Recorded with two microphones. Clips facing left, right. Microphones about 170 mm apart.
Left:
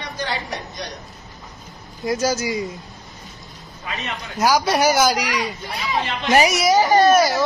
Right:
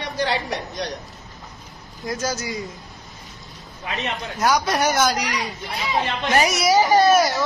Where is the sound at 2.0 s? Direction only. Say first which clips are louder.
Left 5 dB; 5° left (ahead or behind).